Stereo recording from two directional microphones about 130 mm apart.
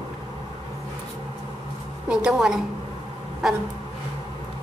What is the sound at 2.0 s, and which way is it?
Speech, 5° right (ahead or behind).